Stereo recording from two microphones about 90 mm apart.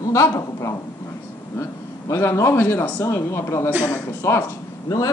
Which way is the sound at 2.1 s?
30° left (ahead or behind).